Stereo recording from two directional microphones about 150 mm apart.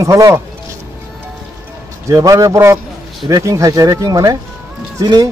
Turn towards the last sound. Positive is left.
turn(degrees=-25)  # may be behind; listen again after turning